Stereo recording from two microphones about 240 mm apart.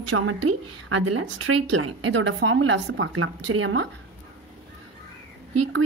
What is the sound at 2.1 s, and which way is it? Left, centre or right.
A woman's voice, right.